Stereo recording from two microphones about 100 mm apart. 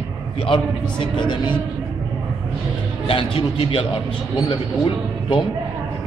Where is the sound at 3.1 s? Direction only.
60° left (ahead or behind).